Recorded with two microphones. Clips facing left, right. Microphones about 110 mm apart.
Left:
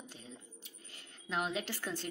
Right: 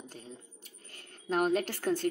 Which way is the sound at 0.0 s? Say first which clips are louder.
Right 4 dB; 45° right (ahead or behind).